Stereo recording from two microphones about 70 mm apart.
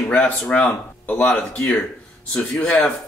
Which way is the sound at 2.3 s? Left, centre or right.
Centre.